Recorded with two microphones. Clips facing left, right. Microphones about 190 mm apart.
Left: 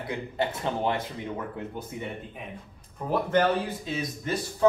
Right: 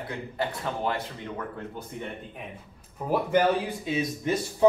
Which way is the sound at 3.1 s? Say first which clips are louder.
Right 1 dB; 10° right (ahead or behind).